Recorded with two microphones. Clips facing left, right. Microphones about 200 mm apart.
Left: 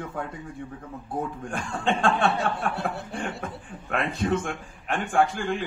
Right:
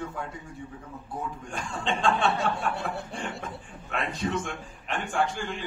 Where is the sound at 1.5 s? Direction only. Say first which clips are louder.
Left 4 dB; 55° left (ahead or behind).